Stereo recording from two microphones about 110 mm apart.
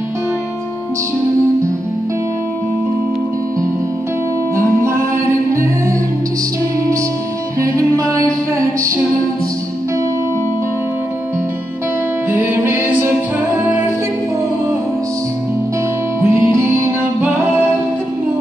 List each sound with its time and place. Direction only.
5.5 s music: 25° right (ahead or behind)
7.6 s music: 30° right (ahead or behind)
12.3 s music: 15° right (ahead or behind)
16.2 s music: 25° right (ahead or behind)